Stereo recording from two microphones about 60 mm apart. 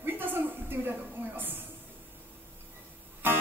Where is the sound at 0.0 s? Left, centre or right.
Right.